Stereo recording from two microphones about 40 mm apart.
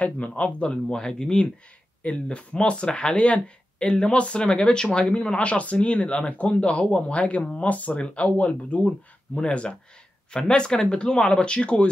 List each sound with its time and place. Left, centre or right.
0.3 s speech: left